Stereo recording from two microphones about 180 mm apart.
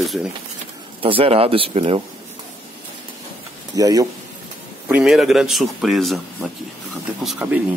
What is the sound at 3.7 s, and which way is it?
Speech, 20° right (ahead or behind).